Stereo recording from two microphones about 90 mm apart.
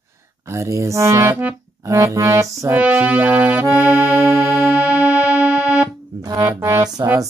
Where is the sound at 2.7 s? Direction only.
20° right (ahead or behind).